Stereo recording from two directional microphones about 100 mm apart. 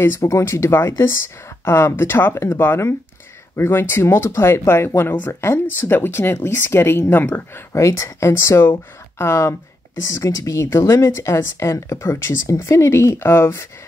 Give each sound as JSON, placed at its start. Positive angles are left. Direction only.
{"t": 0.0, "sound": "speech", "side_deg": 30}